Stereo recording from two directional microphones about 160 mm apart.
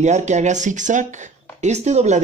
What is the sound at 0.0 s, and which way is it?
Speech, 45° right (ahead or behind).